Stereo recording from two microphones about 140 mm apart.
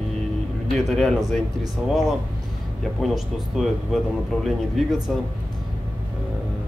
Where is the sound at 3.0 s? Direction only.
Centre (ahead or behind).